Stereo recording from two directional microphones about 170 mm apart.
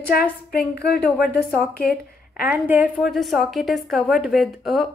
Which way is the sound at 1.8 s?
60° left (ahead or behind).